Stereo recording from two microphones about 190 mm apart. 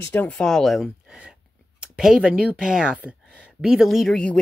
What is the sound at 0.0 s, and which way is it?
Speech, 10° left (ahead or behind).